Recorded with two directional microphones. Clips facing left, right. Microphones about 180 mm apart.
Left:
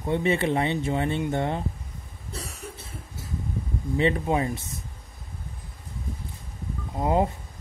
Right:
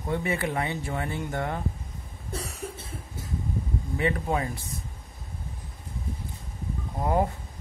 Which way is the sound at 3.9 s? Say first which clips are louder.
Left 4 dB; 25° left (ahead or behind).